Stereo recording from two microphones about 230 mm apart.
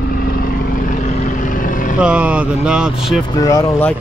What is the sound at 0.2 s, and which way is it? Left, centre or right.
Vehicle, left.